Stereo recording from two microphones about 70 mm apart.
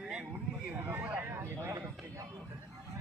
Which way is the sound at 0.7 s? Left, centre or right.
Right.